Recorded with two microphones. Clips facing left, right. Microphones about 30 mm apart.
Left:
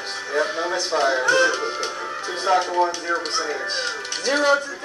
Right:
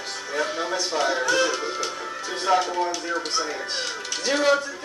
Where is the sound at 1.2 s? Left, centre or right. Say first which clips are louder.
Left 4 dB; left.